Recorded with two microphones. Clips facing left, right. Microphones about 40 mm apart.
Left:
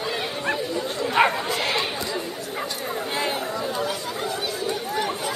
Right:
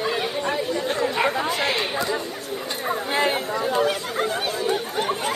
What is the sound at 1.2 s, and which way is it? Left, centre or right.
Bow-wow, left.